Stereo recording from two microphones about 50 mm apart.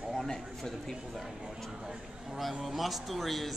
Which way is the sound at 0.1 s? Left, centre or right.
Centre.